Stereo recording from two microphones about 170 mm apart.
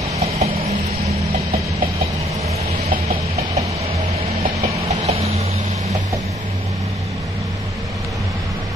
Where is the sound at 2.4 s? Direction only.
40° right (ahead or behind).